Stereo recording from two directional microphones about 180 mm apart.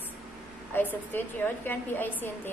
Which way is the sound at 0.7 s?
10° left (ahead or behind).